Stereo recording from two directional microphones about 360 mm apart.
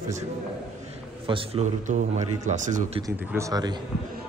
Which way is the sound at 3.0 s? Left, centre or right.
Centre.